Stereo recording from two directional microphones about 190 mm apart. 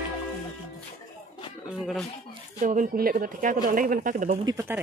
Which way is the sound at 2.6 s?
40° right (ahead or behind).